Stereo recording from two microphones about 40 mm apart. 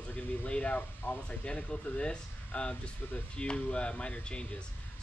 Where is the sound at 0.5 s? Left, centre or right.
Left.